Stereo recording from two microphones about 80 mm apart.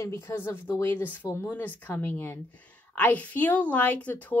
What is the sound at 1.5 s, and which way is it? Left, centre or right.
A woman's voice, left.